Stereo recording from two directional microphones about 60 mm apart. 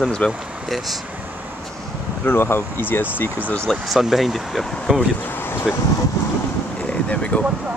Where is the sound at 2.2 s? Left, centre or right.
Left.